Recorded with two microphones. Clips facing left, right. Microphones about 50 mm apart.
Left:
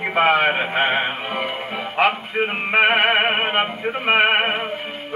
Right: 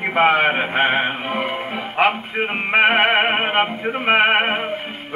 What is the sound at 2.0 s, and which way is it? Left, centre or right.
Music, centre.